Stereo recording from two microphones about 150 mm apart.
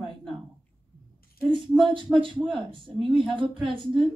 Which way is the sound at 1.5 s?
35° right (ahead or behind).